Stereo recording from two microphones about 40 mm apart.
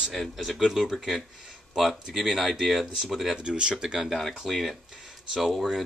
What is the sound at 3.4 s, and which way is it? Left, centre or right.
Speech, right.